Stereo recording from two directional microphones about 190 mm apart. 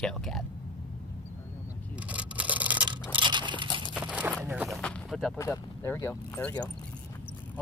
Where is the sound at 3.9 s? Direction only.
5° right (ahead or behind).